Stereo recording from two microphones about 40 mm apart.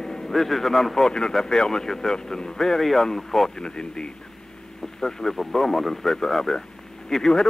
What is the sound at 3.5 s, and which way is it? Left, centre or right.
A man's voice, centre.